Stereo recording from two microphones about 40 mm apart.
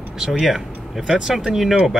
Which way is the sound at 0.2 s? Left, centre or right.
Centre.